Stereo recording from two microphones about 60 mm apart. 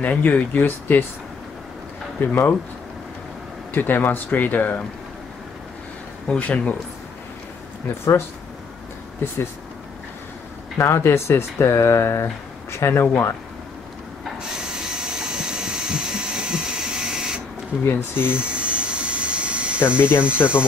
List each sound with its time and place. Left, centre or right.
0.0 s speech: left
2.1 s speech: left
3.7 s speech: left
6.2 s speech: left
10.8 s speech: left
14.6 s a sound: centre
17.8 s speech: left
18.3 s electric toothbrush: centre
20.0 s speech: left